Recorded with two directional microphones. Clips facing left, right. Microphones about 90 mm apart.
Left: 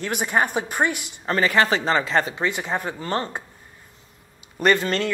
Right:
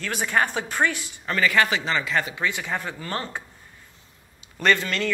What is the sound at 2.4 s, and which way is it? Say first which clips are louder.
Speech: left 3 dB; 25° left (ahead or behind).